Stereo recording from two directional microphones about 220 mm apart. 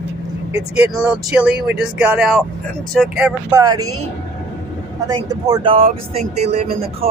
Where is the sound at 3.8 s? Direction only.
75° right (ahead or behind).